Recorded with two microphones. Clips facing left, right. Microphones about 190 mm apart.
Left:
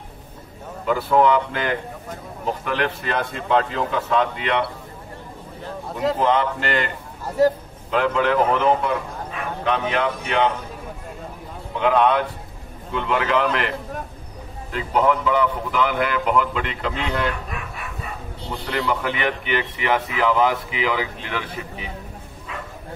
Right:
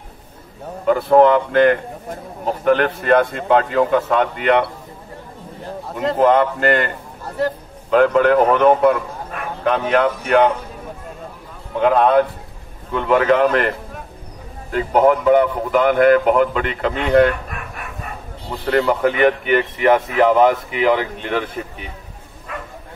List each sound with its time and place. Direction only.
0.8 s a man's voice: 45° right (ahead or behind)
6.1 s a man's voice: 50° right (ahead or behind)
7.9 s speech: 45° right (ahead or behind)
11.8 s a man's voice: 45° right (ahead or behind)